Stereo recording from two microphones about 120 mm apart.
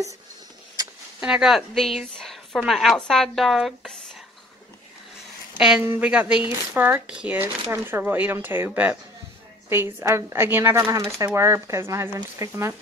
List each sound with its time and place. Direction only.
1.2 s speech: 5° right (ahead or behind)
5.9 s speech: 10° right (ahead or behind)